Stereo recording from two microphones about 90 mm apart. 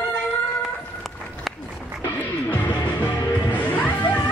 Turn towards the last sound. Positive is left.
turn(degrees=20)  # may be behind; listen again after turning